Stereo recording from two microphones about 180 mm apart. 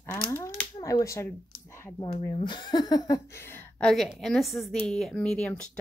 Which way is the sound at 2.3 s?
25° left (ahead or behind).